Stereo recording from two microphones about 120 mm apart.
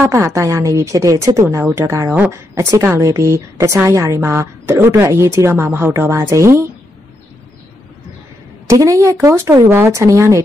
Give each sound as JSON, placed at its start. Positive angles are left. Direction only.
{"t": 0.0, "sound": "a woman's voice", "side_deg": -20}
{"t": 8.6, "sound": "a woman's voice", "side_deg": -30}